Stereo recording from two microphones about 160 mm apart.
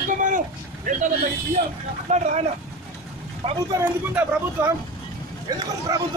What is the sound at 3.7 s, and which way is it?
Speech, 15° right (ahead or behind).